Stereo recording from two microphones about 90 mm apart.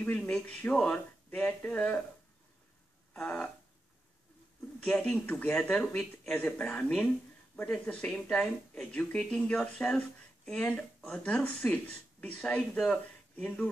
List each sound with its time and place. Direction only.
0.2 s speech: 15° left (ahead or behind)
3.1 s a sound: 15° left (ahead or behind)
4.8 s speech: 15° left (ahead or behind)